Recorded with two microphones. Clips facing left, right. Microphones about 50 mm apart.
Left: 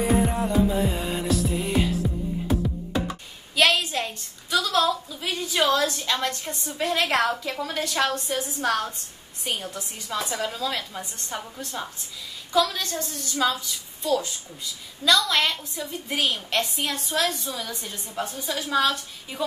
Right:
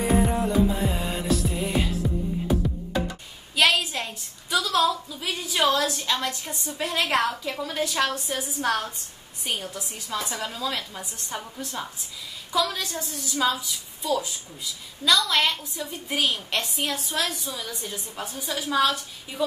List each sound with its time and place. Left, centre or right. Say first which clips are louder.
0.0 s music: even; centre
3.5 s a woman's voice: left 1 dB; centre